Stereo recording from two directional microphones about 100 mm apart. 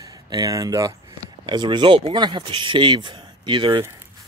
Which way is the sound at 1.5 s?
50° right (ahead or behind).